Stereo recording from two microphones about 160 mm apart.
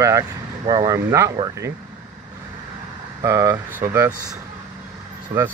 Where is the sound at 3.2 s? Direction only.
20° right (ahead or behind).